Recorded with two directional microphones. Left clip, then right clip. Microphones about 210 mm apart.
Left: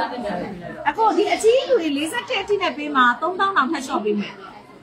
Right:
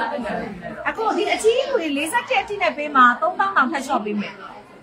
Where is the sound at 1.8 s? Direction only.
10° right (ahead or behind).